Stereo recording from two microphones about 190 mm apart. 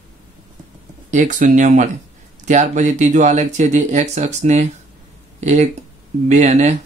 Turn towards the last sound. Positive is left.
turn(degrees=-40)  # may be behind; listen again after turning